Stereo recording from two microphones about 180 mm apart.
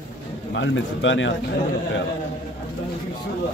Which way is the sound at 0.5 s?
90° left.